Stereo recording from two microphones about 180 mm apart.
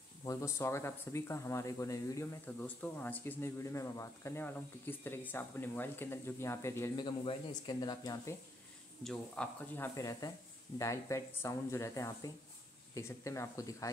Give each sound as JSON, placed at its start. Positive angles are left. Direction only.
{"t": 0.2, "sound": "speech", "side_deg": 15}
{"t": 9.0, "sound": "speech", "side_deg": 5}
{"t": 9.9, "sound": "speech", "side_deg": 20}